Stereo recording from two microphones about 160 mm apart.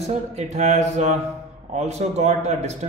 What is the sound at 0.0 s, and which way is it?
Speech, 45° right (ahead or behind).